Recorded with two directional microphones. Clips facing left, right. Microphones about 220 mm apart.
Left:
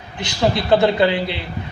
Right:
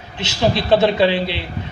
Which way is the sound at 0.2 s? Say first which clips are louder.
Right 1 dB; 20° right (ahead or behind).